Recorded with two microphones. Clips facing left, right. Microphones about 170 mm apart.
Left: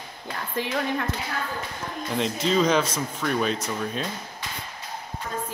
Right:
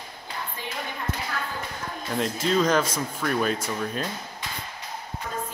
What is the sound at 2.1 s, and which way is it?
Speech, centre (ahead or behind).